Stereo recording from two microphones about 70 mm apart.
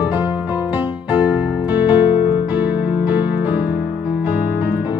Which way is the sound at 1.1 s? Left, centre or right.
Right.